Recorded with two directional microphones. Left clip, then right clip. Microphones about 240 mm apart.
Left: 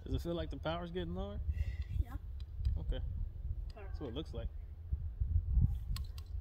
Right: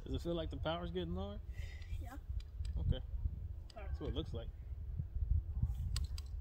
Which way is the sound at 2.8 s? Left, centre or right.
Left.